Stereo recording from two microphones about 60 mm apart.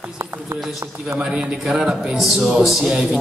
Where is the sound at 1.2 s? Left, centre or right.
Centre.